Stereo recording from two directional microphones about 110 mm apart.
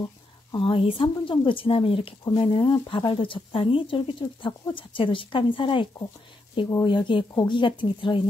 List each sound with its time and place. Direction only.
0.5 s speech: 50° left (ahead or behind)